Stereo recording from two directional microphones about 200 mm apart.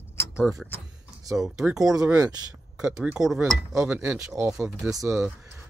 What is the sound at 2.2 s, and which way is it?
Speech, 20° right (ahead or behind).